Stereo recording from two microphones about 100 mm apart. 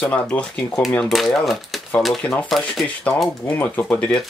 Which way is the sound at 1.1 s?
5° left (ahead or behind).